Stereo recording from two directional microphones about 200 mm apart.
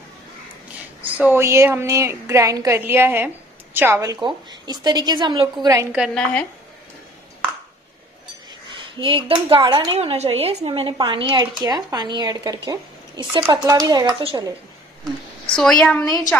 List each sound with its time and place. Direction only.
1.0 s a woman's voice: 5° right (ahead or behind)
5.9 s a woman's voice: centre (ahead or behind)
9.0 s a woman's voice: 25° right (ahead or behind)
15.5 s a woman's voice: 5° left (ahead or behind)